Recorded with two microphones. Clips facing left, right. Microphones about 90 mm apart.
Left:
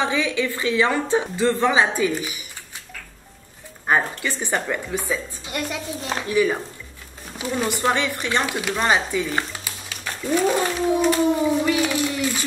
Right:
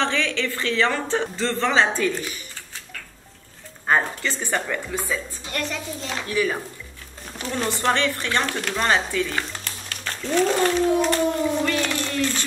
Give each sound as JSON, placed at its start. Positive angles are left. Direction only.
{"t": 0.0, "sound": "a woman's voice", "side_deg": 10}
{"t": 3.9, "sound": "a woman's voice", "side_deg": 10}
{"t": 7.3, "sound": "a woman's voice", "side_deg": 5}